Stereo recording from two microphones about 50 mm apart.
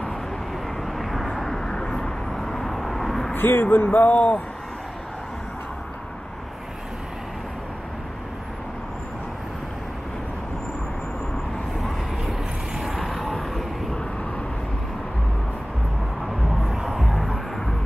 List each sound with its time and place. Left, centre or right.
0.9 s vehicle: centre
3.3 s speech: left
3.6 s a sound: left
12.7 s vehicle: centre
16.6 s vehicle: centre